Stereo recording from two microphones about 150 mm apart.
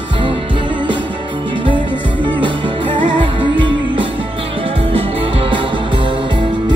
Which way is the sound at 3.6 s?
30° right (ahead or behind).